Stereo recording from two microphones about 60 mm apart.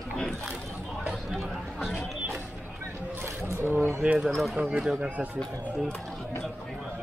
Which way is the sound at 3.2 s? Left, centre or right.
Right.